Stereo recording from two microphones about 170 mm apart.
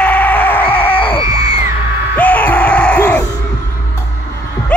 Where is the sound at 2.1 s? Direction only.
10° left (ahead or behind).